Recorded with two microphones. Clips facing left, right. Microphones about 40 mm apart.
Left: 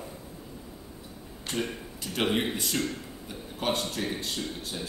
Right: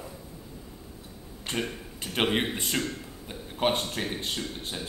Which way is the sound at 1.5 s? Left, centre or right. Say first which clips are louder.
Even; right.